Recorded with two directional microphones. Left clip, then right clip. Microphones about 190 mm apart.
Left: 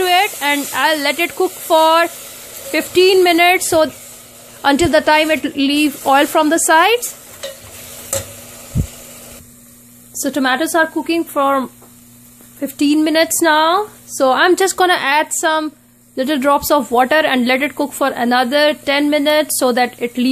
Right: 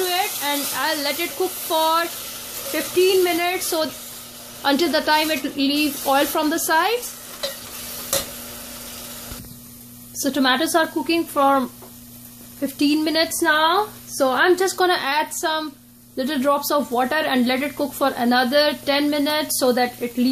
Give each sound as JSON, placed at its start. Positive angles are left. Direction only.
{"t": 0.0, "sound": "speech", "side_deg": 45}
{"t": 2.7, "sound": "speech", "side_deg": 55}
{"t": 10.1, "sound": "a woman's voice", "side_deg": 35}
{"t": 13.5, "sound": "speech", "side_deg": 60}